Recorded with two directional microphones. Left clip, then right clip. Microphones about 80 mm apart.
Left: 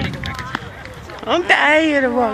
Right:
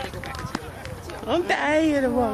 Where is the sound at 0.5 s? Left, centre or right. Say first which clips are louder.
Left 6 dB; right.